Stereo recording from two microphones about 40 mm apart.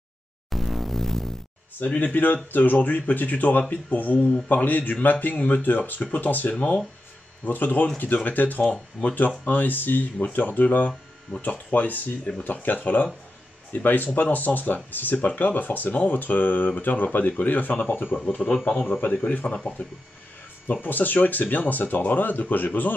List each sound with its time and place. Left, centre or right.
0.5 s music: centre
1.9 s speech: left
2.1 s speech: left
4.5 s speech: left
19.2 s speech: left
20.6 s speech: left